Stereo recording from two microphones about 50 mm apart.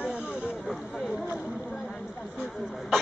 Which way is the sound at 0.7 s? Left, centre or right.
Centre.